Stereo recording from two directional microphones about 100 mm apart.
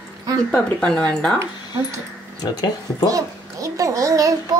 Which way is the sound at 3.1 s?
35° right (ahead or behind).